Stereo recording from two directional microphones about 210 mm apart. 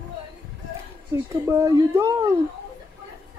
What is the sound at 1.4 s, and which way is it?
Speech, 15° right (ahead or behind).